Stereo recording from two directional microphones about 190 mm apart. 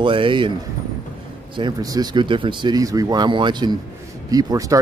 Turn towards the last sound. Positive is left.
turn(degrees=-15)  # may be behind; listen again after turning